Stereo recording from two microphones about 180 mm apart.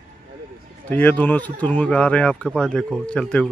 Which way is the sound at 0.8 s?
10° left (ahead or behind).